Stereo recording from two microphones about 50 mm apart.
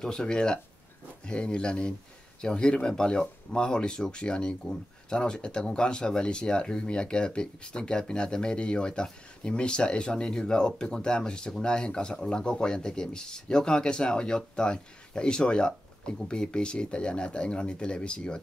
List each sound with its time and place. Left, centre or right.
0.0 s speech: centre